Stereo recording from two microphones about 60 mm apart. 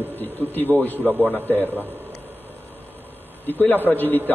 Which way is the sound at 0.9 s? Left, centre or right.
Right.